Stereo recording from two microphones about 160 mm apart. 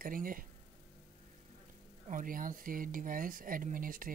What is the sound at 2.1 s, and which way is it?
Speech, 60° right (ahead or behind).